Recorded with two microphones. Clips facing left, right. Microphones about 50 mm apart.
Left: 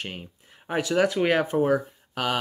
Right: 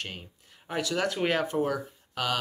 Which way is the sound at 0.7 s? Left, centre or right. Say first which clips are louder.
Left 6 dB; left.